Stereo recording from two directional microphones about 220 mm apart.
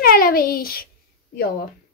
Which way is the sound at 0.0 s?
40° left (ahead or behind).